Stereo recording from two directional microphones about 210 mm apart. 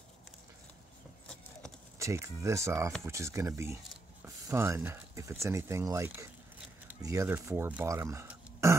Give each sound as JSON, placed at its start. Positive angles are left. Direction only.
{"t": 2.0, "sound": "speech", "side_deg": -15}